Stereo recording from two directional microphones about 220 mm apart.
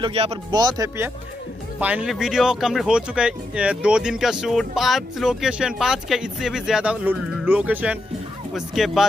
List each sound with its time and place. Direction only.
0.0 s speech: 25° right (ahead or behind); by 9.0 s centre (ahead or behind)